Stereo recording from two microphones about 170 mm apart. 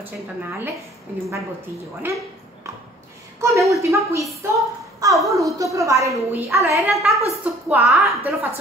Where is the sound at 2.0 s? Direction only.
10° right (ahead or behind).